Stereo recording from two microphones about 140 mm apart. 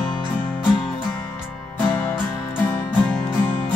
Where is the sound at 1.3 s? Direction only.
Centre (ahead or behind).